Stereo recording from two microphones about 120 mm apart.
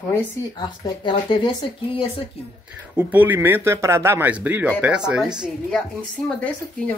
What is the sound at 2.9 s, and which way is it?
Speech, 15° right (ahead or behind).